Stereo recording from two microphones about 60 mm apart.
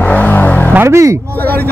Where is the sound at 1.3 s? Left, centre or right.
Left.